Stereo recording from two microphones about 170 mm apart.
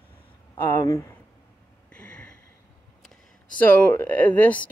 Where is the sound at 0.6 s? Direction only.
15° left (ahead or behind).